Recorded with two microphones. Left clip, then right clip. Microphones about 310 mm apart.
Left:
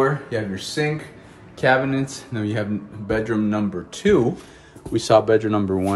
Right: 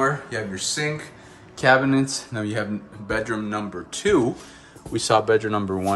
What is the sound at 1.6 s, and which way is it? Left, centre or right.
Speech, centre.